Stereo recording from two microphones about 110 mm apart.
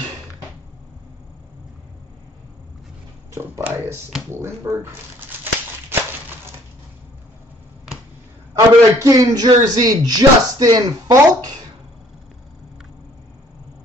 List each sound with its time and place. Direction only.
3.3 s speech: 20° right (ahead or behind)
8.5 s a man's voice: 30° right (ahead or behind)